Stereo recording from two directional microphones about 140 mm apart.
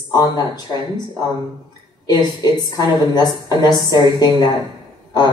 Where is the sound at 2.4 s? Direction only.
30° left (ahead or behind).